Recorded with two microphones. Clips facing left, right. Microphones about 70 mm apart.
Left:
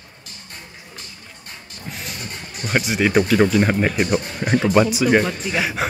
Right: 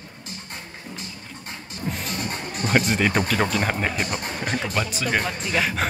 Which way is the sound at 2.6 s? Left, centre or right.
Centre.